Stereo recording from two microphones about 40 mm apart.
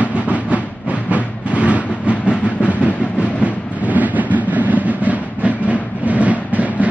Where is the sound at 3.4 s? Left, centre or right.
Right.